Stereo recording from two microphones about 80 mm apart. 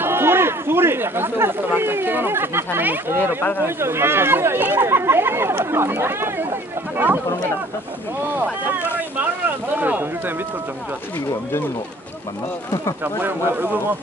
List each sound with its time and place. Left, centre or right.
0.0 s speech: right
9.8 s speech: right
13.0 s speech: right